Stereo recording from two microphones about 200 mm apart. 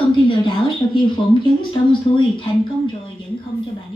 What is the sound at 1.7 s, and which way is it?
Speech, 25° left (ahead or behind).